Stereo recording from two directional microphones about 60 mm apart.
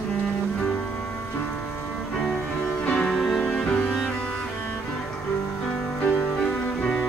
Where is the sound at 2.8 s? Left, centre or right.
Centre.